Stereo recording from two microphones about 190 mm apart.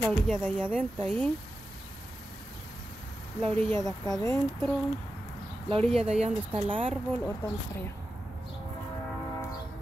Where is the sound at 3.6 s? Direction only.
10° left (ahead or behind).